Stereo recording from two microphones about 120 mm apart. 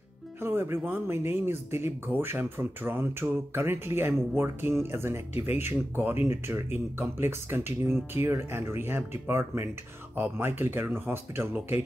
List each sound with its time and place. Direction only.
0.4 s speech: 20° right (ahead or behind)